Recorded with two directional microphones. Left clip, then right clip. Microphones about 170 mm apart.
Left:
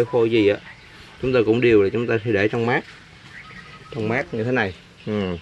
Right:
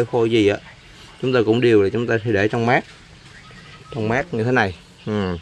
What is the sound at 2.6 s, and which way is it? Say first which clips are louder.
Speech: right 3 dB; 15° right (ahead or behind).